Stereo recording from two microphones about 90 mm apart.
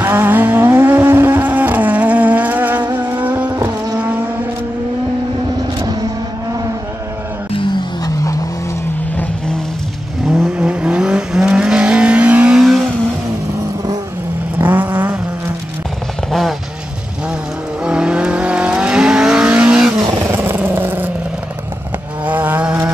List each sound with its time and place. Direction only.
0.0 s vehicle: 20° right (ahead or behind)
3.5 s vehicle: 40° right (ahead or behind)
8.0 s vehicle: 40° left (ahead or behind)
10.2 s vehicle: centre (ahead or behind)
12.5 s vehicle: centre (ahead or behind)
14.6 s vehicle: 20° right (ahead or behind)
16.3 s vehicle: centre (ahead or behind)
17.8 s vehicle: 10° right (ahead or behind)
20.1 s vehicle: 30° right (ahead or behind)
22.2 s vehicle: 20° right (ahead or behind)